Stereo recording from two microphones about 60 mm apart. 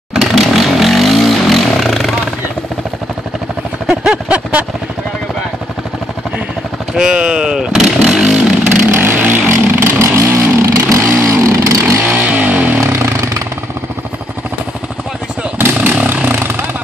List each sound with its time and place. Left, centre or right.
0.1 s vehicle: centre
3.8 s a sound: centre
7.0 s vehicle: centre
8.9 s vehicle: right
12.1 s vehicle: right
12.8 s chainsaw: right
15.5 s chainsaw: right
16.3 s vehicle: right